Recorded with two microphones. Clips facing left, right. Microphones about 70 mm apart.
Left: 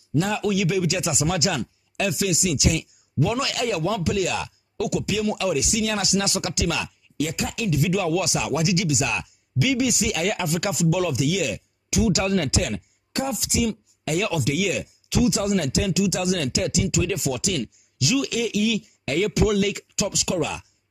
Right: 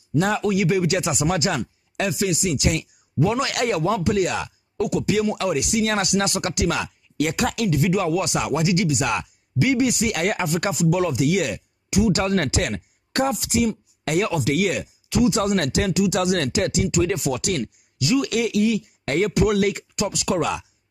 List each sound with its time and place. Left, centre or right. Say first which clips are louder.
0.4 s speech: right 2 dB; right
3.5 s speech: right 3 dB; right
4.7 s speech: right 2 dB; right
5.4 s speech: right 2 dB; right
7.8 s speech: even; right
11.2 s speech: right 3 dB; right
11.9 s speech: right 2 dB; right
17.9 s speech: right 2 dB; right
18.3 s speech: right 3 dB; right
18.7 s speech: right 2 dB; right
20.2 s speech: right 4 dB; right